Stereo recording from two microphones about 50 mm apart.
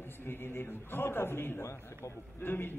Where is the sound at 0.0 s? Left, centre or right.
Left.